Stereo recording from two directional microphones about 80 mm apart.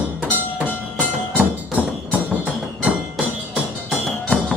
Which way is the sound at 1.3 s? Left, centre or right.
Centre.